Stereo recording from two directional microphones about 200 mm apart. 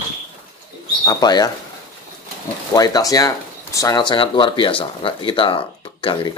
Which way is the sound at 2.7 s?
20° left (ahead or behind).